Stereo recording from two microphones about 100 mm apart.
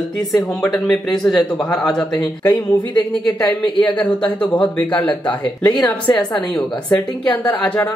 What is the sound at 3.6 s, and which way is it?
A woman's voice, 15° left (ahead or behind).